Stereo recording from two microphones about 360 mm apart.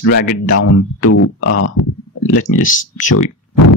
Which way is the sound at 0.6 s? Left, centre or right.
Left.